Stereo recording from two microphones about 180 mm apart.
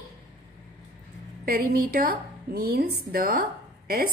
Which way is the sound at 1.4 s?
55° right (ahead or behind).